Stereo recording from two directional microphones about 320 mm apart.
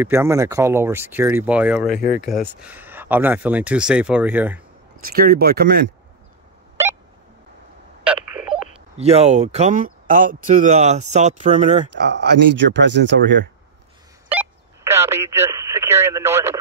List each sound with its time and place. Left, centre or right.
0.0 s speech: centre
5.0 s speech: right
6.8 s a sound: centre
8.9 s speech: centre; by 13.5 s right
14.4 s speech: centre